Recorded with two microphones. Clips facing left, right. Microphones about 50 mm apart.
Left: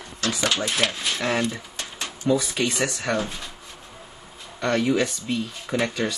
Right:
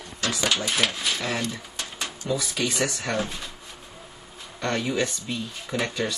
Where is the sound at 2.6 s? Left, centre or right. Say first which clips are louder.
Left 2 dB; centre.